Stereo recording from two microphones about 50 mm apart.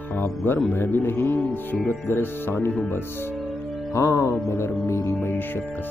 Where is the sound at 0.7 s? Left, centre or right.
Left.